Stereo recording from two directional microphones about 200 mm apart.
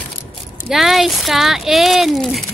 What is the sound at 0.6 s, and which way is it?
Speech, centre (ahead or behind).